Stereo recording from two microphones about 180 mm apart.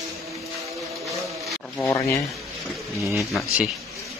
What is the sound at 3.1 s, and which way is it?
Speech, centre (ahead or behind).